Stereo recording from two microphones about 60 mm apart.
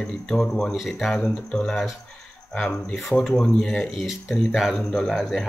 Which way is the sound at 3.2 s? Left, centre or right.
Centre.